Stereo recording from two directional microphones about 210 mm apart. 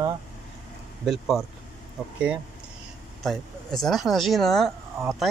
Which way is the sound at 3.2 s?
Centre (ahead or behind).